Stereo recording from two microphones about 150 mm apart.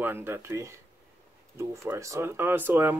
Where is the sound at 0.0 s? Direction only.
15° right (ahead or behind).